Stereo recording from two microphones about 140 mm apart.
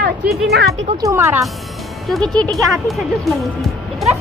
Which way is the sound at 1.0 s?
20° right (ahead or behind).